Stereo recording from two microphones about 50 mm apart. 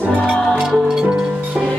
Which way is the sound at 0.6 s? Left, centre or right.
Centre.